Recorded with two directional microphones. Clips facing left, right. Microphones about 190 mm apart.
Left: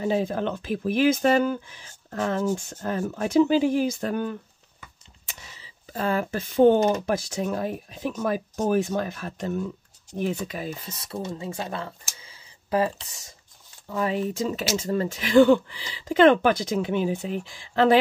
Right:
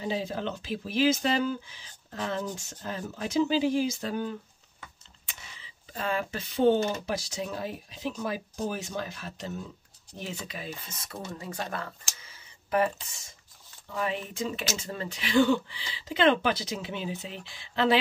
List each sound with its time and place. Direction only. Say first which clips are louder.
0.0 s speech: left 7 dB; 50° left (ahead or behind)
5.2 s speech: left 3 dB; 40° left (ahead or behind)
11.1 s speech: left 6 dB; 25° left (ahead or behind)
12.2 s a sound: left 3 dB; 30° left (ahead or behind)
13.9 s speech: left 6 dB; 40° left (ahead or behind)